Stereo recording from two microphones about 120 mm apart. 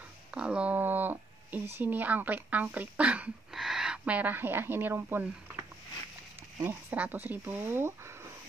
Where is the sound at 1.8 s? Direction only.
15° right (ahead or behind).